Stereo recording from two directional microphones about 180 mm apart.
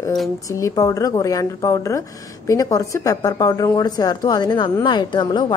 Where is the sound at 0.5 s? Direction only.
20° left (ahead or behind).